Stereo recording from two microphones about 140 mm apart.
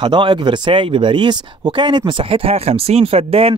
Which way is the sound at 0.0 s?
35° right (ahead or behind).